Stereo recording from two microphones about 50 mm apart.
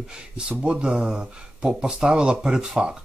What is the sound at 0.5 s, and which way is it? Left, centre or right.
Speech, centre.